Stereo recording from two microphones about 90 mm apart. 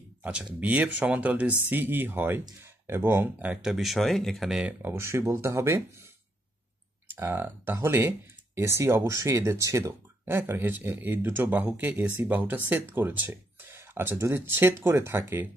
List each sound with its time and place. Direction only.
0.2 s speech: 15° right (ahead or behind)
3.7 s speech: centre (ahead or behind)
4.6 s speech: 15° right (ahead or behind)
4.9 s speech: 30° right (ahead or behind)
7.1 s speech: 25° right (ahead or behind)